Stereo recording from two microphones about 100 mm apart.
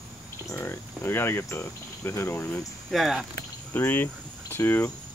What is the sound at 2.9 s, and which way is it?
Speech, centre (ahead or behind).